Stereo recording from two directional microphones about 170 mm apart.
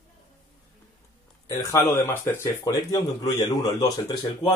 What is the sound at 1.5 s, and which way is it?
Speech, 20° left (ahead or behind).